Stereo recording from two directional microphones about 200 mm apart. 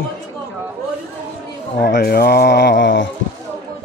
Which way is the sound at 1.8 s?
50° left (ahead or behind).